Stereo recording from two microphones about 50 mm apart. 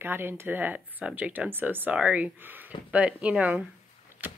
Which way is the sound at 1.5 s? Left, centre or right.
Right.